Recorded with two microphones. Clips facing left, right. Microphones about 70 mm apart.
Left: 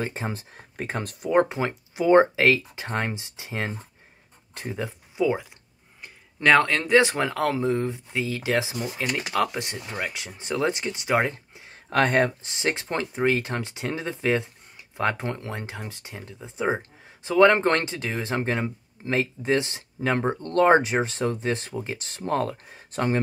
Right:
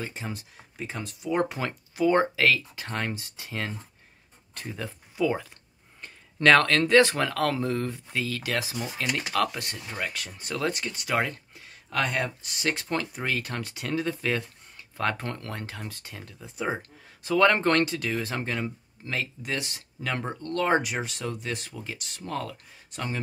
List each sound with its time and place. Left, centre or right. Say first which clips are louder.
0.0 s speech: left 5 dB; left
0.7 s speech: left 5 dB; left
1.4 s speech: left 4 dB; left
11.9 s speech: left 7 dB; left
12.4 s speech: left 2 dB; left